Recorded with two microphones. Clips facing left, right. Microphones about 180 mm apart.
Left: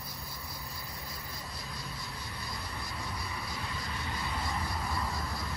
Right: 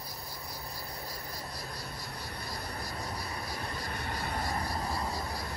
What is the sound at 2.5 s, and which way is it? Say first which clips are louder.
Vehicle: right 3 dB; 40° right (ahead or behind).